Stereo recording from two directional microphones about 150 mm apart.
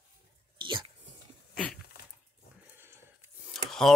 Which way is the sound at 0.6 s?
30° right (ahead or behind).